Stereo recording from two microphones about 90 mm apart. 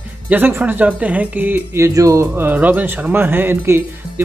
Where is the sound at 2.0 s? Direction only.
40° right (ahead or behind).